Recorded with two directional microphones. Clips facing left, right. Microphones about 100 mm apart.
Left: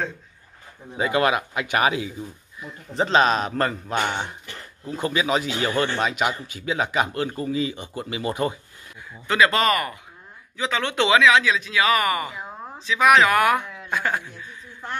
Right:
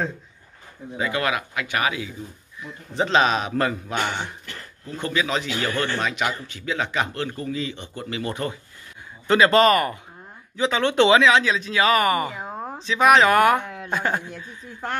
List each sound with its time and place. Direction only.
0.9 s speech: 25° left (ahead or behind)
2.6 s speech: centre (ahead or behind)
4.2 s speech: 15° left (ahead or behind)
9.3 s speech: 30° right (ahead or behind)